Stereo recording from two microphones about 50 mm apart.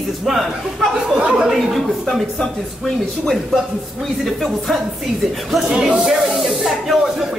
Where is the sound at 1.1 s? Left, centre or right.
Right.